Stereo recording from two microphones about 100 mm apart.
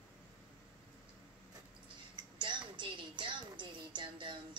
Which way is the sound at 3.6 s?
50° right (ahead or behind).